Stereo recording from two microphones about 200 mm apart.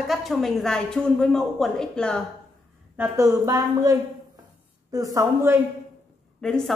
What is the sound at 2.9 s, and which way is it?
Speech, 15° right (ahead or behind).